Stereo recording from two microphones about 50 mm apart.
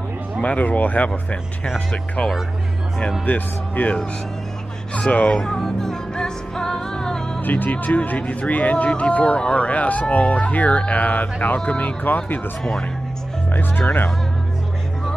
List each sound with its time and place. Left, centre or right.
0.4 s speech: left
3.3 s speech: left
5.4 s music: centre
7.4 s speech: left
11.6 s speech: left
13.5 s speech: left